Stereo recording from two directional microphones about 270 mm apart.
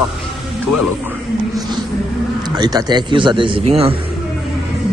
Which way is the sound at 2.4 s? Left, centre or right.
Centre.